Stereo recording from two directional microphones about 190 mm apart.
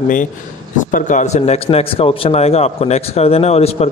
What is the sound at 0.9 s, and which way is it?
Speech, 40° left (ahead or behind).